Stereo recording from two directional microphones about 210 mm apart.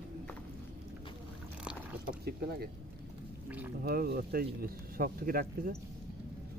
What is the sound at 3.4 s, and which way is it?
Speech, 10° right (ahead or behind).